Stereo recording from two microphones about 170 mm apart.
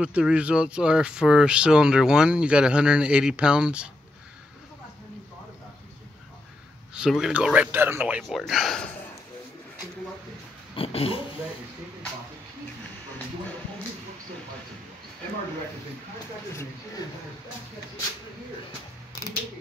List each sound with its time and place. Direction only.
0.0 s speech: 5° right (ahead or behind)
6.9 s speech: 5° right (ahead or behind)
10.8 s speech: 35° left (ahead or behind)